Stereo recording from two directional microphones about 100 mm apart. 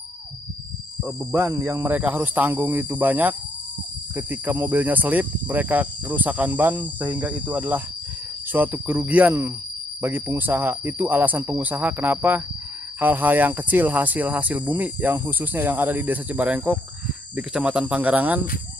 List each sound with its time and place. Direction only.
1.0 s speech: 15° right (ahead or behind)